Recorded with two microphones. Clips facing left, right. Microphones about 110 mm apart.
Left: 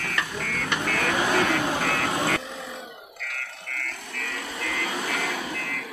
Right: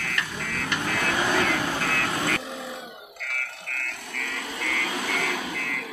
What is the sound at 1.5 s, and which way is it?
Vehicle, 20° left (ahead or behind).